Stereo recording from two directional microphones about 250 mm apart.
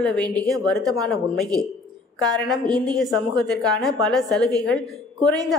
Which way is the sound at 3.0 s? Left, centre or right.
Centre.